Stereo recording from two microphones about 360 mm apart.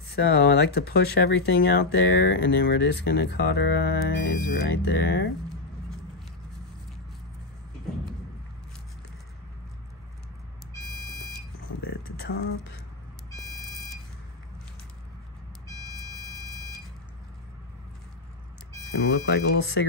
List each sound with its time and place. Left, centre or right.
0.1 s speech: left
12.2 s speech: left
19.2 s speech: left